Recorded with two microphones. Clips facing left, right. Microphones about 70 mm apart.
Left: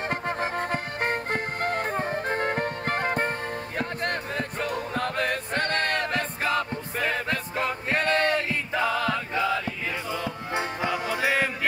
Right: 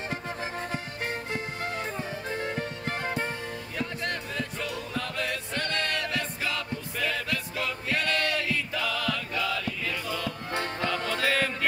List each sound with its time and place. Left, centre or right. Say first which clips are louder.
0.1 s music: left 6 dB; left; by 11.5 s centre